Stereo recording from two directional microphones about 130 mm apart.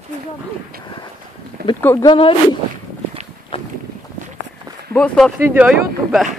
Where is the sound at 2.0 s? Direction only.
45° left (ahead or behind).